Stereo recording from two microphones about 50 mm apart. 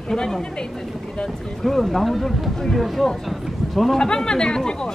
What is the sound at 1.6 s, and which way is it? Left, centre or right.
Speech, centre.